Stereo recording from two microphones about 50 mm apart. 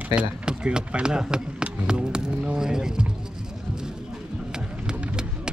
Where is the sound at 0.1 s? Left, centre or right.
Right.